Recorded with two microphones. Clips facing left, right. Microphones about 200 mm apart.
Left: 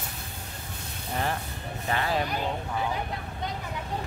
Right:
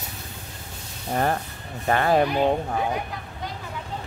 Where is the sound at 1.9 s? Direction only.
55° right (ahead or behind).